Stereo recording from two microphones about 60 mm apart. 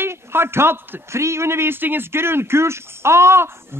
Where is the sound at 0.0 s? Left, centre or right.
Right.